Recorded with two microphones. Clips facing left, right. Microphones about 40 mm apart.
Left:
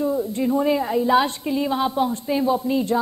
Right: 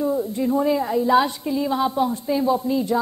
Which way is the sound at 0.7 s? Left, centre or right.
Centre.